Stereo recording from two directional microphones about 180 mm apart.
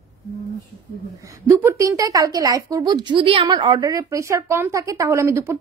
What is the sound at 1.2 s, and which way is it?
A woman's voice, 15° right (ahead or behind).